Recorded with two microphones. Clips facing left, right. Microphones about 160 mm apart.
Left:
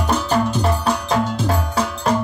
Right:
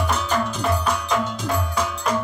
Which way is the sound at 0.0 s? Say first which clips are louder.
Left 4 dB; 35° left (ahead or behind).